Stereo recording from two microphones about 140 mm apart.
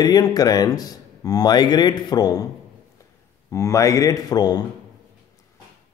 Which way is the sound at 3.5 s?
20° left (ahead or behind).